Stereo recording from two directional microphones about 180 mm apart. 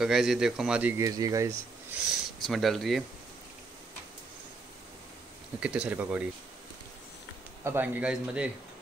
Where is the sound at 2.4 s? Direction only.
Centre (ahead or behind).